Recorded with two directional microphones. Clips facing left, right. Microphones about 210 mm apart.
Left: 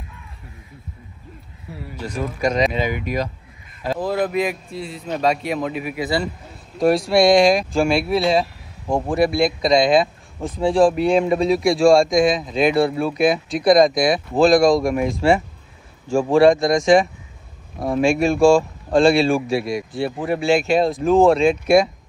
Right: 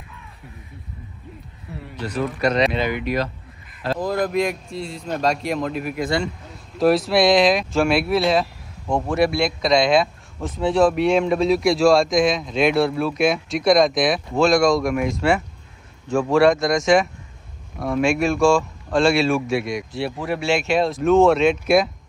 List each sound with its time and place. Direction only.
2.0 s speech: 10° left (ahead or behind)
14.8 s speech: 30° left (ahead or behind)
15.0 s speech: centre (ahead or behind)
17.7 s speech: 30° left (ahead or behind)
18.0 s speech: centre (ahead or behind)